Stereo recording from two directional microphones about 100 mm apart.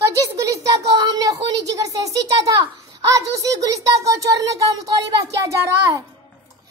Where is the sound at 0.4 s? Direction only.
35° right (ahead or behind).